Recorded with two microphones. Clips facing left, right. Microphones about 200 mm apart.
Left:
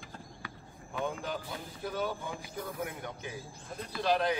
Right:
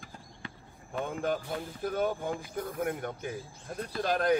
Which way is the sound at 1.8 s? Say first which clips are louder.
Right 5 dB; 55° right (ahead or behind).